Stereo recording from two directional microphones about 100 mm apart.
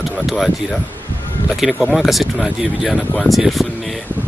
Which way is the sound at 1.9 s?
Centre (ahead or behind).